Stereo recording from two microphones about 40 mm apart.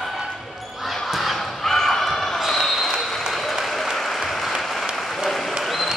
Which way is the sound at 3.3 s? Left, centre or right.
Centre.